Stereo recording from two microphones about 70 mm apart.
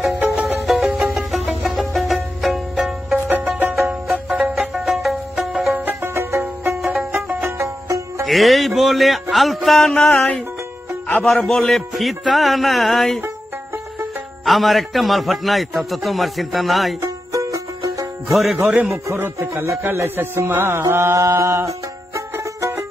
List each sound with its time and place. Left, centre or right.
0.3 s music: centre
5.9 s music: right
6.7 s music: centre
7.4 s music: right
8.3 s a man's voice: centre
11.2 s a man's voice: centre
14.4 s a man's voice: centre
17.0 s music: right
18.3 s a man's voice: centre
18.6 s a man's voice: centre
19.4 s music: right